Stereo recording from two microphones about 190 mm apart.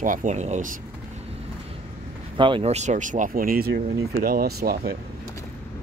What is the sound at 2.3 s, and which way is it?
Speech, 25° right (ahead or behind).